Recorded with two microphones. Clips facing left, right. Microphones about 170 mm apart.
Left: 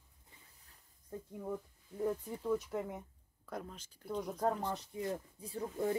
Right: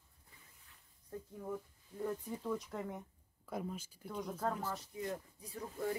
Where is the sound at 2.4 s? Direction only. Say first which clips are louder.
Left 6 dB; 5° left (ahead or behind).